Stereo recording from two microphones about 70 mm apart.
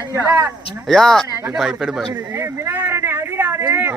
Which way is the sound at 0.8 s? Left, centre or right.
Centre.